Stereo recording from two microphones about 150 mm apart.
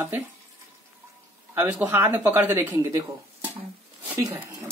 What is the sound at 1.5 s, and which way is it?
Speech, 10° right (ahead or behind).